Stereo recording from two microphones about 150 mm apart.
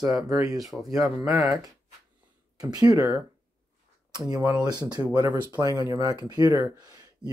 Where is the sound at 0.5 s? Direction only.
Centre (ahead or behind).